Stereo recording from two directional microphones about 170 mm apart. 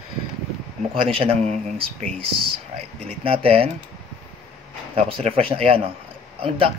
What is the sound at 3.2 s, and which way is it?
Speech, 35° right (ahead or behind).